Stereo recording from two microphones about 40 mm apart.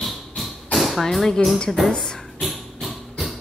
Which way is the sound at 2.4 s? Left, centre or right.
Centre.